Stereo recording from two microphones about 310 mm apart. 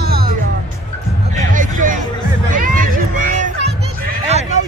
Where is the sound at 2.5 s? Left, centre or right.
Right.